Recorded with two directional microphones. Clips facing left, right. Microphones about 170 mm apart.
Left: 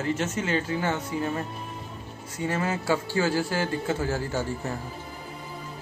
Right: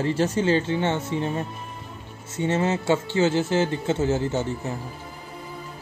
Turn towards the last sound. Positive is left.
turn(degrees=-20)  # may be behind; listen again after turning